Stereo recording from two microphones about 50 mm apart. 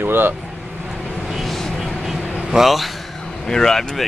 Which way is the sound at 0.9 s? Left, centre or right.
Centre.